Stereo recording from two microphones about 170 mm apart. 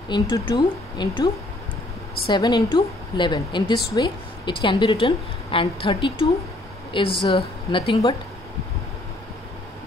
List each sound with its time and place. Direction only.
0.1 s a woman's voice: 25° left (ahead or behind)